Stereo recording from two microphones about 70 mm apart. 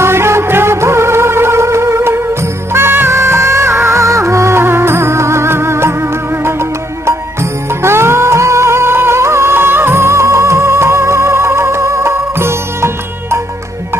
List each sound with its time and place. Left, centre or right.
0.0 s music of bollywood: right
7.8 s music: right